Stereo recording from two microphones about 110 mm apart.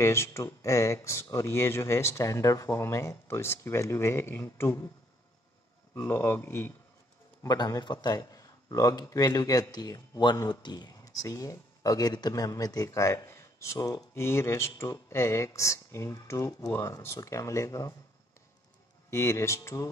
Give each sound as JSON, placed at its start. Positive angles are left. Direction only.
{"t": 0.0, "sound": "speech", "side_deg": 25}
{"t": 5.9, "sound": "speech", "side_deg": 20}
{"t": 7.4, "sound": "a man's voice", "side_deg": 40}
{"t": 19.0, "sound": "speech", "side_deg": 25}